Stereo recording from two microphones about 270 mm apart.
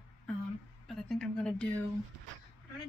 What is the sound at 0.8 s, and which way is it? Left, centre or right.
Speech, centre.